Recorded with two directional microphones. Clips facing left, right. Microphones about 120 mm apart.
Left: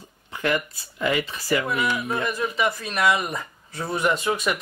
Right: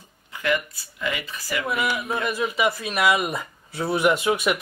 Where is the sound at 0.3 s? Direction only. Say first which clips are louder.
Even; 40° left (ahead or behind).